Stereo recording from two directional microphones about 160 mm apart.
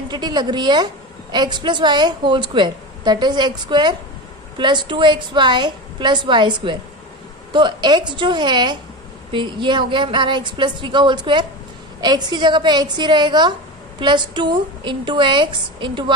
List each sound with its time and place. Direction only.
0.1 s a woman's voice: 25° right (ahead or behind)